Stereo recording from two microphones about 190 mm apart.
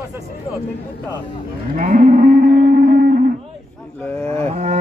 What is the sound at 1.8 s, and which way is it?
Livestock, 45° right (ahead or behind).